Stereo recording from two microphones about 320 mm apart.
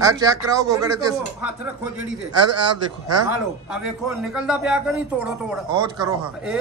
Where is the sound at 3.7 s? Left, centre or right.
Centre.